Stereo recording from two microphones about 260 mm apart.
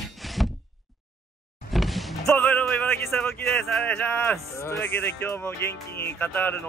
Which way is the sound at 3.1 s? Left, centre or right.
Centre.